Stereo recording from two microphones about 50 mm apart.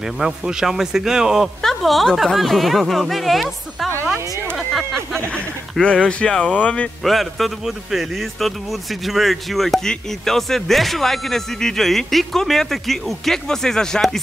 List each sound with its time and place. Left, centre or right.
0.2 s a man's voice: centre
1.6 s speech: centre
5.3 s speech: left
7.0 s speech: centre